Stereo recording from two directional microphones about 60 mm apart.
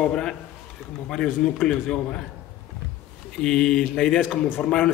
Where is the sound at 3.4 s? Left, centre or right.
Centre.